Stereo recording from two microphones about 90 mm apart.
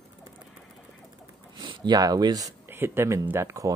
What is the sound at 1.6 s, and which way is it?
Speech, 55° right (ahead or behind).